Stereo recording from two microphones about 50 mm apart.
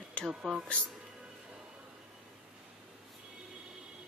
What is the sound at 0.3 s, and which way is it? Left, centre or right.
Speech, centre.